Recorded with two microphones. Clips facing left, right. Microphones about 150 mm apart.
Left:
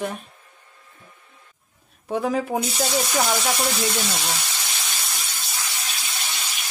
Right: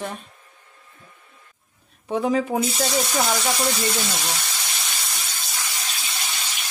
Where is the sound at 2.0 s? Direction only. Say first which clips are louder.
Right 2 dB; centre (ahead or behind).